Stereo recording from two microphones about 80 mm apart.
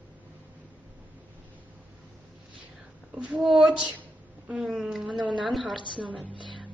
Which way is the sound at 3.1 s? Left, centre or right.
Centre.